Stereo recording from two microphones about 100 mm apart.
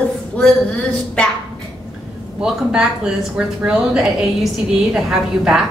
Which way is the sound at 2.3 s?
10° right (ahead or behind).